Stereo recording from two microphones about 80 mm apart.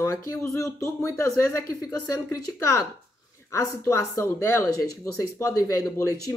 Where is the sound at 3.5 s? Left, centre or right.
Left.